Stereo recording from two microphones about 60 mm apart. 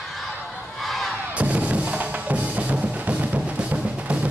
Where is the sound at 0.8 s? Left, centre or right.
Centre.